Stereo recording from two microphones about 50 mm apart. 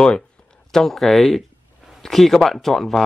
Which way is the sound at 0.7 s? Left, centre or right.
Centre.